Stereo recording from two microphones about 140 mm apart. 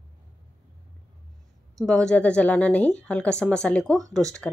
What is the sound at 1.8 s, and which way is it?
Speech, 5° left (ahead or behind).